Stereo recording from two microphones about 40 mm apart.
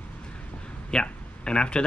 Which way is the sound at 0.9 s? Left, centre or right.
Left.